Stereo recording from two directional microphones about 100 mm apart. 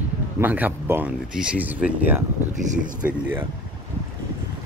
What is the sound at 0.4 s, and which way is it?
Speech, 20° right (ahead or behind).